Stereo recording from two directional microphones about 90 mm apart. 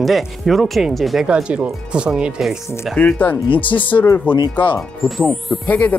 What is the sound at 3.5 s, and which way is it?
Speech, 70° left (ahead or behind).